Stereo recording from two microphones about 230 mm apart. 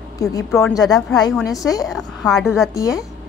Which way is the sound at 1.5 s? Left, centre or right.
Centre.